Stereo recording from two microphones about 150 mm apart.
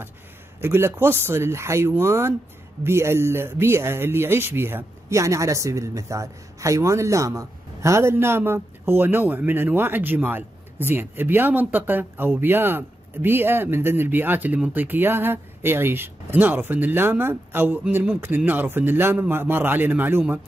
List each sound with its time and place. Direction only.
0.6 s speech: 15° right (ahead or behind)